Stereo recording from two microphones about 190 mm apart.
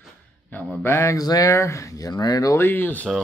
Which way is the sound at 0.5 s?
10° left (ahead or behind).